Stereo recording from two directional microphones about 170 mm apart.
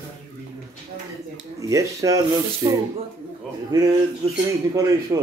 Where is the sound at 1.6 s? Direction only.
20° right (ahead or behind).